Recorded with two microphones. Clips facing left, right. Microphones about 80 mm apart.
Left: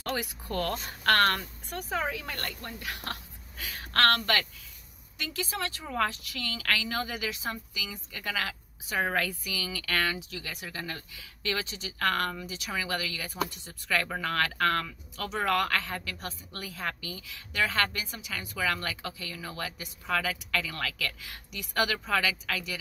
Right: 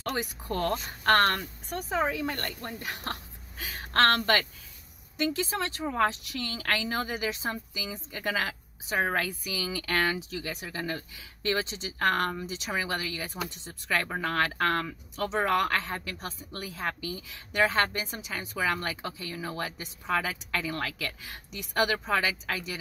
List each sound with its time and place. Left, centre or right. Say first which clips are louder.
0.1 s a woman's voice: even; right